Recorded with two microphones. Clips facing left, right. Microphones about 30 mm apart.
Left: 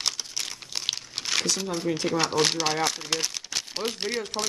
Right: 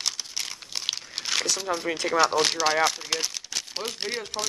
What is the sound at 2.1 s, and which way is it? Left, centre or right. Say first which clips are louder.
Speech: right 4 dB; centre.